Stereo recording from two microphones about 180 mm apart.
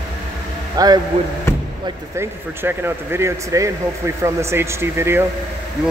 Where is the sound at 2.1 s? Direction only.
15° right (ahead or behind).